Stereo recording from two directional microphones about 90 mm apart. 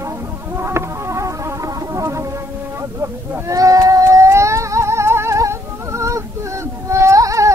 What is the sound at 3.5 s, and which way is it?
Music, 40° right (ahead or behind).